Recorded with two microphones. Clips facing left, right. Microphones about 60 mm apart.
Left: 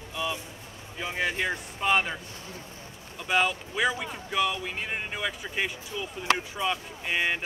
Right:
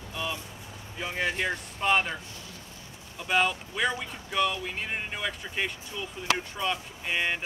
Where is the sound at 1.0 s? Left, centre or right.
Centre.